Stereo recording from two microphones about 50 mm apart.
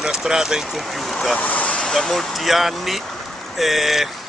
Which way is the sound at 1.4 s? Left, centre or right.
Left.